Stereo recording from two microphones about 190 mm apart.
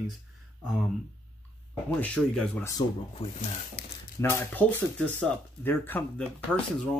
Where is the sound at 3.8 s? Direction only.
55° left (ahead or behind).